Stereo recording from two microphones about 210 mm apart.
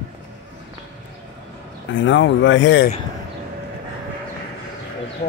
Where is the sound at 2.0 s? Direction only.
60° left (ahead or behind).